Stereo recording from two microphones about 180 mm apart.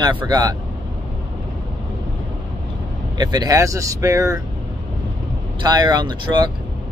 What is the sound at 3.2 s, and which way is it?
Speech, 20° right (ahead or behind).